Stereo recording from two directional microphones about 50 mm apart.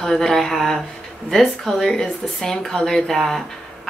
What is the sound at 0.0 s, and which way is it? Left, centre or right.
Speech, centre.